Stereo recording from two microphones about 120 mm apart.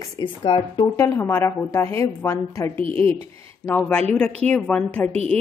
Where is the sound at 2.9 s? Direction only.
15° left (ahead or behind).